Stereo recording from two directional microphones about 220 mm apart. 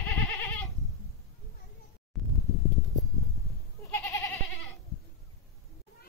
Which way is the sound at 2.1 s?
Centre (ahead or behind).